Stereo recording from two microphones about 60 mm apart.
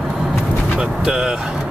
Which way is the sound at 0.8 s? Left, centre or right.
Centre.